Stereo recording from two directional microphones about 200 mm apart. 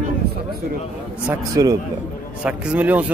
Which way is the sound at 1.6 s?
15° right (ahead or behind).